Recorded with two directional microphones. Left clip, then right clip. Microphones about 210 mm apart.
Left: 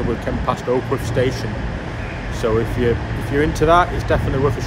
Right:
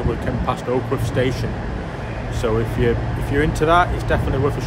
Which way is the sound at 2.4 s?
10° right (ahead or behind).